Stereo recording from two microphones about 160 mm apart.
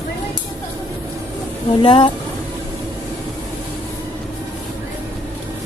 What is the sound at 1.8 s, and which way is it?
Speech, 35° left (ahead or behind).